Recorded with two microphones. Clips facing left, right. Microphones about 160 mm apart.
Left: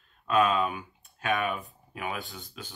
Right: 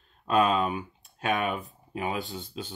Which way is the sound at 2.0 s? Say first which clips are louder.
Right 4 dB; 30° right (ahead or behind).